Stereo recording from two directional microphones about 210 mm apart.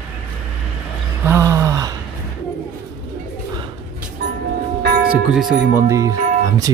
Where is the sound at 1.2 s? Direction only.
10° right (ahead or behind).